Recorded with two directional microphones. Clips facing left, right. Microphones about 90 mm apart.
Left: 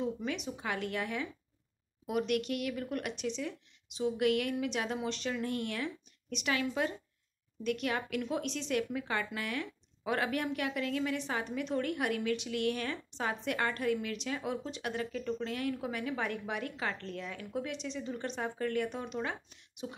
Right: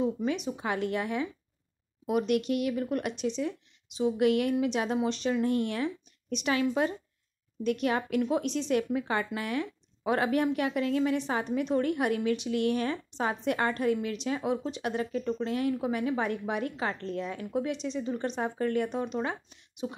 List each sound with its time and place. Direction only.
0.0 s speech: 25° right (ahead or behind)